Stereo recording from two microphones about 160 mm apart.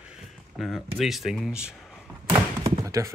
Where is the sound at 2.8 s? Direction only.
20° right (ahead or behind).